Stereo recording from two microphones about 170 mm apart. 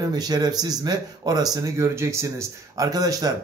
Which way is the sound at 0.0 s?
25° right (ahead or behind).